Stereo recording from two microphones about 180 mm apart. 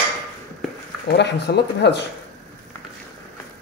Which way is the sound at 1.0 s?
70° left (ahead or behind).